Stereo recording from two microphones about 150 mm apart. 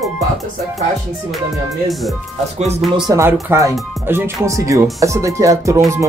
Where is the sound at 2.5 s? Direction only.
45° right (ahead or behind).